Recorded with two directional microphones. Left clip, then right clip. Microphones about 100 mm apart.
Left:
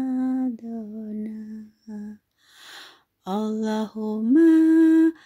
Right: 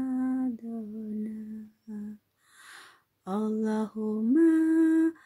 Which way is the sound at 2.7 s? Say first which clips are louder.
Left 7 dB; 15° left (ahead or behind).